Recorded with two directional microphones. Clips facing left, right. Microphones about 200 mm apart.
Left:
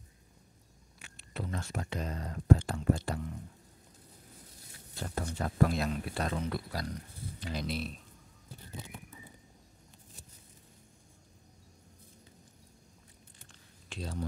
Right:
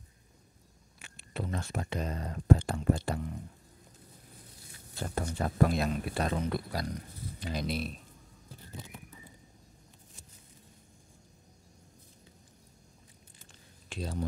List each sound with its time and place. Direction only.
1.1 s speech: 20° right (ahead or behind)
5.0 s speech: 25° right (ahead or behind)
13.8 s speech: 15° right (ahead or behind)